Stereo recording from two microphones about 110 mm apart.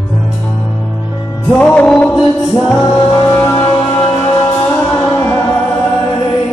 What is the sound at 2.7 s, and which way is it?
Music, 25° left (ahead or behind).